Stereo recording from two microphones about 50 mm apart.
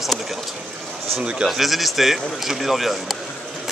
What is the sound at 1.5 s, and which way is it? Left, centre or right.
Speech, centre.